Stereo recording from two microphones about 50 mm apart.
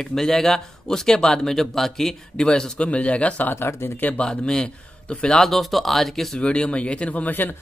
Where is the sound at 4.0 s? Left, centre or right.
Left.